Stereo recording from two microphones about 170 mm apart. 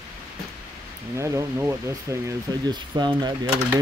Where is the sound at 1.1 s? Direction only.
15° right (ahead or behind).